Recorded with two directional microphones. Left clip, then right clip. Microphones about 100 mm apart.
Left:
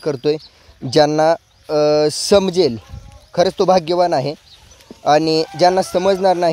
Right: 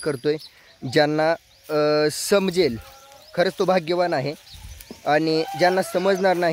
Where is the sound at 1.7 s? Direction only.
25° left (ahead or behind).